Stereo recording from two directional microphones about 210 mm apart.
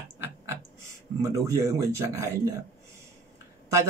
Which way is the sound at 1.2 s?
15° right (ahead or behind).